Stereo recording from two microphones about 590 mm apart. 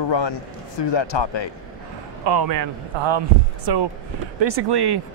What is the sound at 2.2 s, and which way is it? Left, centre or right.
A man's voice, right.